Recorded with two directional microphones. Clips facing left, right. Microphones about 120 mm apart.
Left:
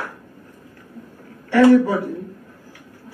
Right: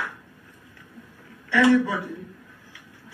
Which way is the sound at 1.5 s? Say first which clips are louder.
Left 6 dB; 40° left (ahead or behind).